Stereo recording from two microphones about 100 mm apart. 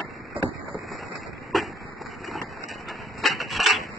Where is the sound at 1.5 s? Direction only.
Centre (ahead or behind).